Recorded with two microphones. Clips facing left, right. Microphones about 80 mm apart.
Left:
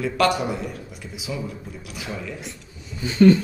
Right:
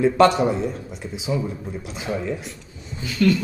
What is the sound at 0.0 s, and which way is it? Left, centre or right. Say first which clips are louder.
Speech: right 5 dB; right.